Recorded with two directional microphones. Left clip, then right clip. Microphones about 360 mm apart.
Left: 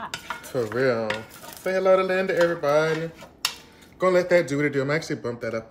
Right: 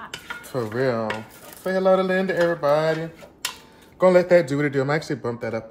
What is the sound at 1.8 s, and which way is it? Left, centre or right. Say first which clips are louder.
Speech: right 1 dB; right.